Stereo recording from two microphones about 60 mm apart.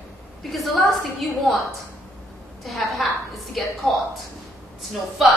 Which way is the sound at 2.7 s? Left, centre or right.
Centre.